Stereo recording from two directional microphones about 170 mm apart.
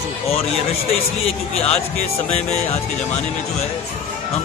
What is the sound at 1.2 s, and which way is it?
A man's voice, 35° left (ahead or behind).